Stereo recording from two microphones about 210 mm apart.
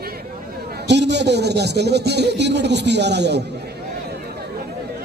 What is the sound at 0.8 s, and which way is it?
Speech, 55° right (ahead or behind).